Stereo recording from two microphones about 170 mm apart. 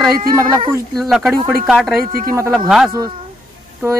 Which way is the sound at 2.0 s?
60° right (ahead or behind).